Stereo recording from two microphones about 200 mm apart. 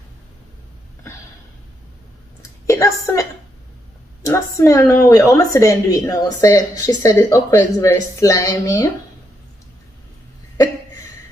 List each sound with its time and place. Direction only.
2.6 s a woman's voice: 15° left (ahead or behind)